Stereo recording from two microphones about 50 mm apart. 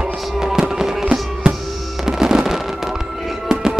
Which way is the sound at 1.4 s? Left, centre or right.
Centre.